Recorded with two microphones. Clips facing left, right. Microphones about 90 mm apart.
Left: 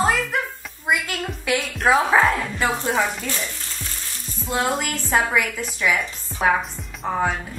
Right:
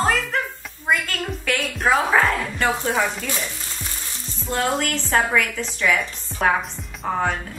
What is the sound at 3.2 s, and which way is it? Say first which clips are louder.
Speech: right 1 dB; 15° right (ahead or behind).